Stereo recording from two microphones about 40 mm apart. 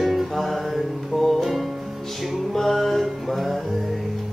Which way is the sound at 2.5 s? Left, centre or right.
Centre.